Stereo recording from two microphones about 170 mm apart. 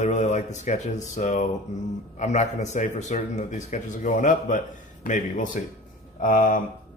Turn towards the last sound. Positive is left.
turn(degrees=55)  # may be behind; listen again after turning